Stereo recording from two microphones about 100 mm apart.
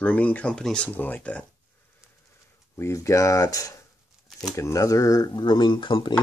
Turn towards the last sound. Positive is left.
turn(degrees=55)  # may be behind; listen again after turning